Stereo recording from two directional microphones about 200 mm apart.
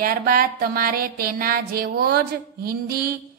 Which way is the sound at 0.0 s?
45° right (ahead or behind).